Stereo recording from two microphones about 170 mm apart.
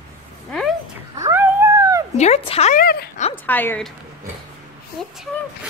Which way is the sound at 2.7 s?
60° left (ahead or behind).